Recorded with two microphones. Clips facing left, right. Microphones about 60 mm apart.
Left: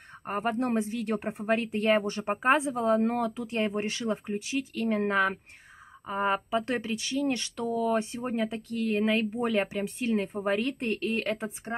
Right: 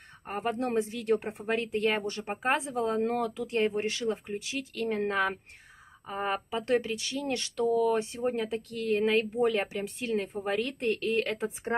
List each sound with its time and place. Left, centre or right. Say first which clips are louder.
0.4 s speech: left 2 dB; left
0.7 s speech: right 1 dB; centre; by 2.4 s left
2.4 s speech: left 4 dB; centre